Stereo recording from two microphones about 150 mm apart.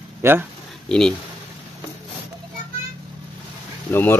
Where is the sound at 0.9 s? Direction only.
5° left (ahead or behind).